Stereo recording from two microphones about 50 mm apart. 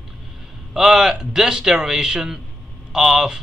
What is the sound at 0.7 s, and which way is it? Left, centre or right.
A man's voice, centre.